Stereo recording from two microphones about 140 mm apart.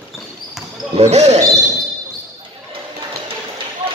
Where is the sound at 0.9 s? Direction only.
50° right (ahead or behind).